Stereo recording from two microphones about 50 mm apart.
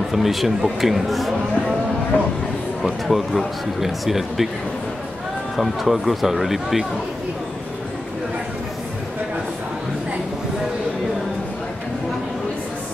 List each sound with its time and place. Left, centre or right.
0.1 s speech: centre
2.1 s speech: left
2.8 s speech: centre
5.6 s speech: centre